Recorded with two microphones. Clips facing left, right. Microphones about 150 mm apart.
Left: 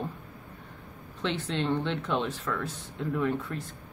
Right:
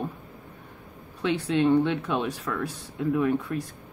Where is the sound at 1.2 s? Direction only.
10° right (ahead or behind).